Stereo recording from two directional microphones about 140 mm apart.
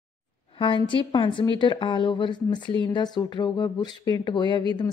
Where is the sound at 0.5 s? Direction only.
40° left (ahead or behind).